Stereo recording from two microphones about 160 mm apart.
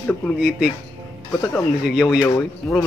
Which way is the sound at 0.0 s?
10° left (ahead or behind).